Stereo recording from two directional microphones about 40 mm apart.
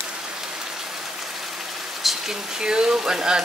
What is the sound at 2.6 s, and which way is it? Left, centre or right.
Speech, centre.